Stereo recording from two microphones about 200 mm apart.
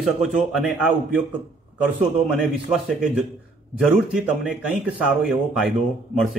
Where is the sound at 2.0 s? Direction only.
5° right (ahead or behind).